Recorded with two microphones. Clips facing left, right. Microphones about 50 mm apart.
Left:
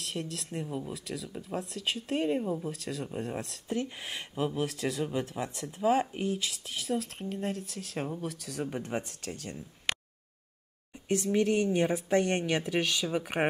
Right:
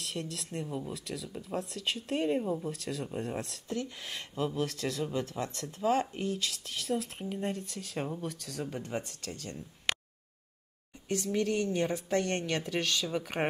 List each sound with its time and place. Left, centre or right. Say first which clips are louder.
0.0 s speech: left 1 dB; centre
3.6 s speech: left 3 dB; centre
8.6 s speech: left 2 dB; left
11.1 s speech: left 4 dB; left